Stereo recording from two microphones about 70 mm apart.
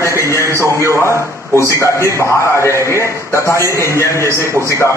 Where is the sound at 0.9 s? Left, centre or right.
Left.